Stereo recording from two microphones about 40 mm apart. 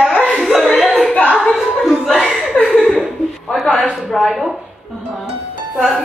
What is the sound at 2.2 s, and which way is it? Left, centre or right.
Chuckle, centre.